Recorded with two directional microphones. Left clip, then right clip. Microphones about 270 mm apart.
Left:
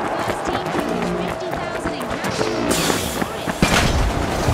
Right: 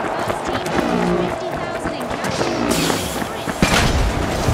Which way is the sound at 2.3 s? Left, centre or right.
Centre.